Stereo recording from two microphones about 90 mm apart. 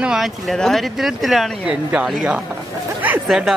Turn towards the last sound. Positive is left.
turn(degrees=-5)  # may be behind; listen again after turning